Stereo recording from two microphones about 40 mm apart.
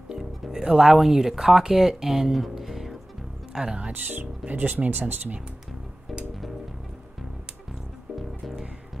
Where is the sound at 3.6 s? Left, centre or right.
Right.